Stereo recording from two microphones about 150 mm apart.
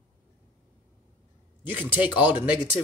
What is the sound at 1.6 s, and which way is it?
Speech, 10° right (ahead or behind).